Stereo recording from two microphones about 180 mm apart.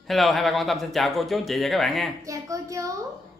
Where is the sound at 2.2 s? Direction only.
20° right (ahead or behind).